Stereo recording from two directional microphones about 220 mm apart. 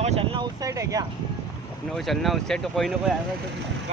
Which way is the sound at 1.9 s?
Centre (ahead or behind).